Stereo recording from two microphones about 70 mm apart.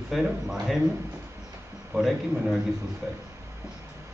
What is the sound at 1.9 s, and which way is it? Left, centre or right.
Speech, centre.